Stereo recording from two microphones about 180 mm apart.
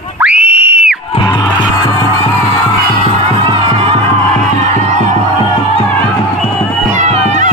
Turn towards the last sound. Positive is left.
turn(degrees=-40)  # may be behind; listen again after turning